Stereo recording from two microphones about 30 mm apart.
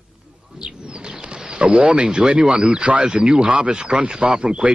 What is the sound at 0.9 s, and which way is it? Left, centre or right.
Speech, right.